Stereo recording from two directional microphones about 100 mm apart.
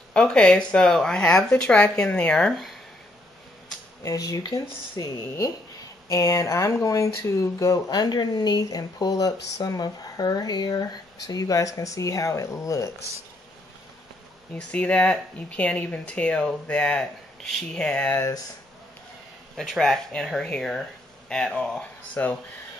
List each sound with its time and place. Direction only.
0.1 s speech: 10° left (ahead or behind)
4.0 s speech: 35° left (ahead or behind)
14.6 s speech: 10° left (ahead or behind)
19.5 s speech: centre (ahead or behind)